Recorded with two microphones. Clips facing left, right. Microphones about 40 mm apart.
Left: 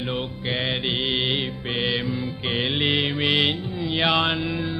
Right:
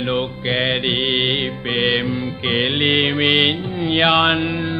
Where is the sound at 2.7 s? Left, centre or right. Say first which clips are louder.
Right 4 dB; right.